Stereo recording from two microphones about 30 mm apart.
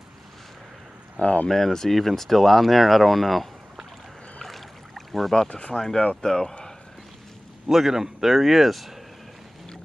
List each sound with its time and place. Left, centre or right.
1.2 s speech: left
1.5 s speech: centre
4.4 s rowboat: centre
5.5 s speech: left
5.8 s speech: centre
7.7 s speech: centre